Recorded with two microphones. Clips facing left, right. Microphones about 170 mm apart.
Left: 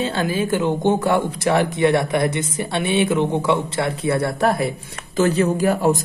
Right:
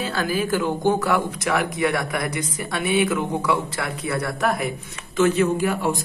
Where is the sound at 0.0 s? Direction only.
25° left (ahead or behind).